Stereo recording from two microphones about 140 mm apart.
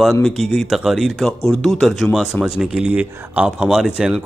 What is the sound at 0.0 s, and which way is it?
Speech, centre (ahead or behind).